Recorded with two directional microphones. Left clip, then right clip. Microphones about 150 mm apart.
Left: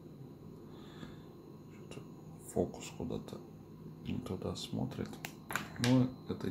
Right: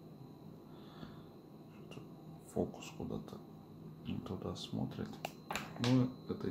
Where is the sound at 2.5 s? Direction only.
15° left (ahead or behind).